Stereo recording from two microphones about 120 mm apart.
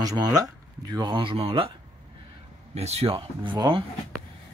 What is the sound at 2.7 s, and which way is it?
Speech, 60° right (ahead or behind).